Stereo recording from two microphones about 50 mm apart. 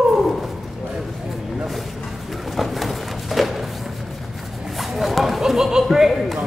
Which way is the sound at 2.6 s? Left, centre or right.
Centre.